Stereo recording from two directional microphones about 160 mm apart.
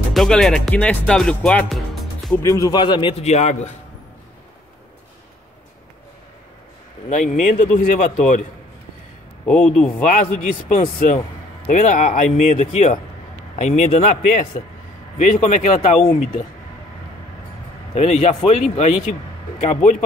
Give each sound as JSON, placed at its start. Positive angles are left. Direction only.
{"t": 0.1, "sound": "speech", "side_deg": 5}
{"t": 2.4, "sound": "a man's voice", "side_deg": 20}
{"t": 7.1, "sound": "speech", "side_deg": 50}
{"t": 9.5, "sound": "speech", "side_deg": 10}
{"t": 10.3, "sound": "speech", "side_deg": 50}
{"t": 15.1, "sound": "speech", "side_deg": 50}
{"t": 17.9, "sound": "speech", "side_deg": 45}